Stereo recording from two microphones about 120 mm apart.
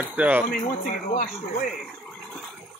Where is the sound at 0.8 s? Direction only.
90° left.